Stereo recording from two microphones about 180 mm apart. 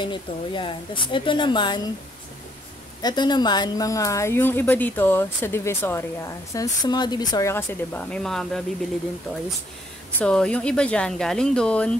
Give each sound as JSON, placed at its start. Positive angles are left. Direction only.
{"t": 0.0, "sound": "a woman's voice", "side_deg": 25}
{"t": 3.0, "sound": "speech", "side_deg": 25}
{"t": 10.2, "sound": "speech", "side_deg": 5}